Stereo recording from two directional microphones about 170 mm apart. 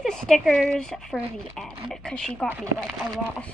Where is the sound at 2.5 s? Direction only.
5° right (ahead or behind).